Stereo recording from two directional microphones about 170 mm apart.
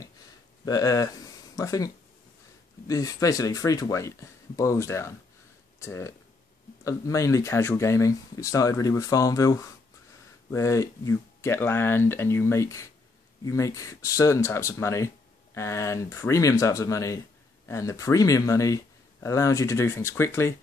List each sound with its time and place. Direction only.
0.7 s speech: 20° left (ahead or behind)
2.9 s speech: 20° left (ahead or behind)